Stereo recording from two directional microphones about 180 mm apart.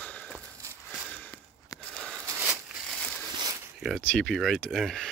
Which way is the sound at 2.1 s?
15° right (ahead or behind).